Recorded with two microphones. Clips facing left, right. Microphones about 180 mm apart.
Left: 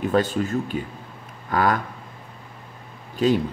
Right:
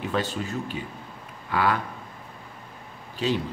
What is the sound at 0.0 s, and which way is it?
A man's voice, 45° left (ahead or behind).